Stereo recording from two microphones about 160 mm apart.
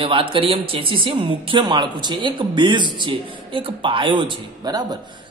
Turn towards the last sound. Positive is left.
turn(degrees=-25)  # may be behind; listen again after turning